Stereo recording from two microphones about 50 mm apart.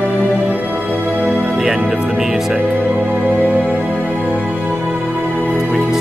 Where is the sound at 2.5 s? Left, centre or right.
Right.